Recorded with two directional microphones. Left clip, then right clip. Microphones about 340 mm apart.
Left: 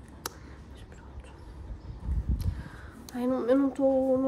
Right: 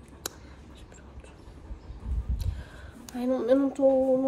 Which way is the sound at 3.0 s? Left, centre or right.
Centre.